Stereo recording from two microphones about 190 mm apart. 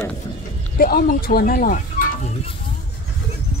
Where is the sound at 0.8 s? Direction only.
50° left (ahead or behind).